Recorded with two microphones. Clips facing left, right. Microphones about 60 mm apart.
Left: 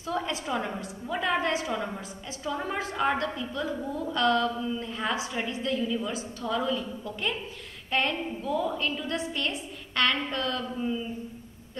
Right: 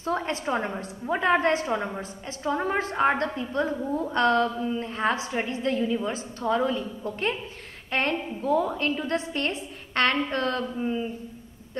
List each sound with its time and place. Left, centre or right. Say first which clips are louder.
0.0 s a woman's voice: right 3 dB; right